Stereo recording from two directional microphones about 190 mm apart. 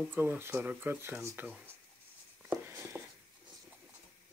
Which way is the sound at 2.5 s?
15° right (ahead or behind).